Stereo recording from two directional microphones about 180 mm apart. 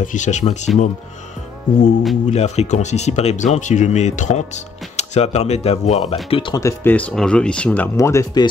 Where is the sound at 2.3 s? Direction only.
35° left (ahead or behind).